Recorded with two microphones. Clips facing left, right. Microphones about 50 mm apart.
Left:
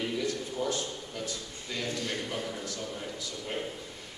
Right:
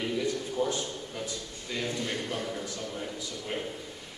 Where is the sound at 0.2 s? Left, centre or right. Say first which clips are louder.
Right 2 dB; centre.